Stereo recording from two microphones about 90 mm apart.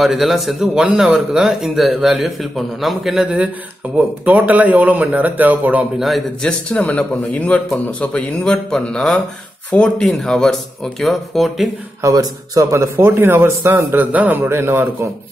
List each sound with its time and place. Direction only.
0.0 s a man's voice: centre (ahead or behind)
4.2 s a man's voice: 15° right (ahead or behind)
5.9 s a man's voice: centre (ahead or behind)
6.4 s a man's voice: 10° left (ahead or behind)
12.0 s a man's voice: 40° right (ahead or behind)